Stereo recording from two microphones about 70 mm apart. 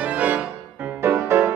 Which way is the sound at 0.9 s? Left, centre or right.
Right.